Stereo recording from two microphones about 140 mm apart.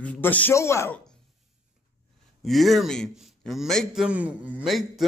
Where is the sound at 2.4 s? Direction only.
Centre (ahead or behind).